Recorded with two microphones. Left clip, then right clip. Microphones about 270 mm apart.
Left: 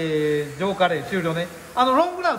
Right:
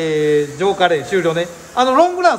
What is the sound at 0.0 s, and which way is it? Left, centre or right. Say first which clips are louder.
Speech: right 7 dB; right.